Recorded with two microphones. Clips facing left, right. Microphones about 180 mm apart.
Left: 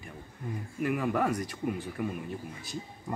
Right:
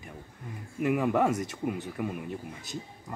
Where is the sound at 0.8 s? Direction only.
20° right (ahead or behind).